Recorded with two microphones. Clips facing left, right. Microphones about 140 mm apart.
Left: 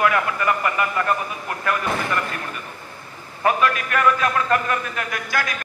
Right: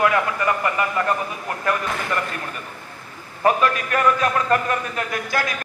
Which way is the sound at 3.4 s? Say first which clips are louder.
Right 1 dB; 35° right (ahead or behind).